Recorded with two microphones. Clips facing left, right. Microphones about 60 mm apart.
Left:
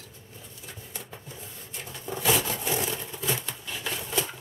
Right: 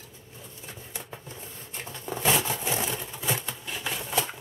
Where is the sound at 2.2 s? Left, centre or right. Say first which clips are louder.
Even; centre.